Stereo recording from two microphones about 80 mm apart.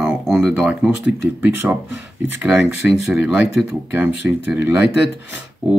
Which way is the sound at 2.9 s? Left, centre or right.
Centre.